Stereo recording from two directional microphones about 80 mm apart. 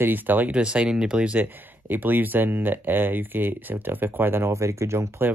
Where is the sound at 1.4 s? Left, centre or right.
Right.